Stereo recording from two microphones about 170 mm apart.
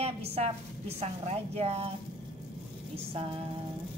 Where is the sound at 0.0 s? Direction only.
35° right (ahead or behind).